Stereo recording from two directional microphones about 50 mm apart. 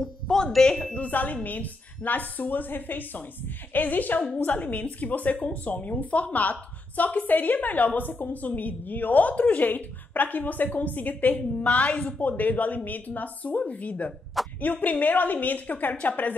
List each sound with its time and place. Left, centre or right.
0.0 s speech: centre
0.9 s a woman's voice: left